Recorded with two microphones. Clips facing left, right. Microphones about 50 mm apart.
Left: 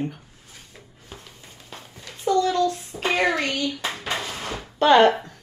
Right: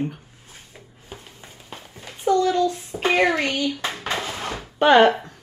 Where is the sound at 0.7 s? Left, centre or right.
Centre.